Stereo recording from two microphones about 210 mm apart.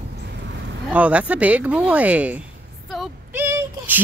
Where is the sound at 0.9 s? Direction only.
5° right (ahead or behind).